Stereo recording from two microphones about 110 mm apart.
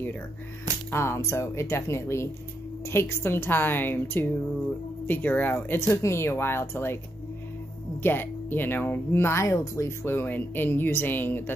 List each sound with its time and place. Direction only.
0.9 s speech: 25° left (ahead or behind)
8.0 s speech: 20° left (ahead or behind)